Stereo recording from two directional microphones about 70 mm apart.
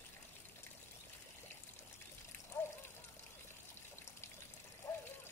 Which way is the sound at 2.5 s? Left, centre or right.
Left.